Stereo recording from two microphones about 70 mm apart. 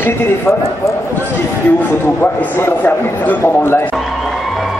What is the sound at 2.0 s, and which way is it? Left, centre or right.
A man's voice, left.